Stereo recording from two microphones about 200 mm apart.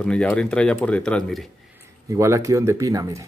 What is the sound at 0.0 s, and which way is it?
Speech, 5° left (ahead or behind).